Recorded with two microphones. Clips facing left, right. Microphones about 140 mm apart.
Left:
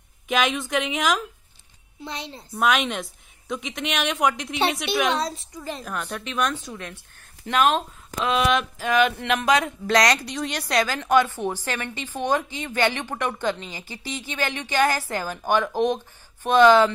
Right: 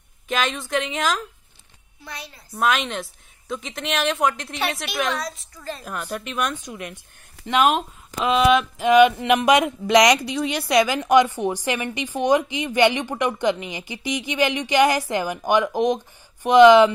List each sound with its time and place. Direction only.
0.3 s a woman's voice: centre (ahead or behind)
2.0 s a woman's voice: 25° left (ahead or behind)
2.5 s a woman's voice: centre (ahead or behind)
5.1 s a woman's voice: 30° left (ahead or behind)
5.6 s a woman's voice: 15° left (ahead or behind)
5.9 s a woman's voice: 5° right (ahead or behind)
8.7 s a woman's voice: 15° right (ahead or behind)